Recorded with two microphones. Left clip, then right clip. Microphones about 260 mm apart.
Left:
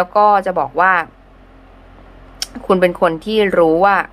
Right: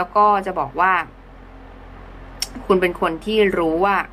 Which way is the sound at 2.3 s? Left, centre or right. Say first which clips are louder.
Left 4 dB; left.